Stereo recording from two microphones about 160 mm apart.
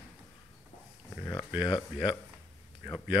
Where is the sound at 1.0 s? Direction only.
20° left (ahead or behind).